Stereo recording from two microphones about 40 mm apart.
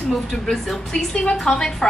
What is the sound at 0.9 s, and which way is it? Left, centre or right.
Speech, centre.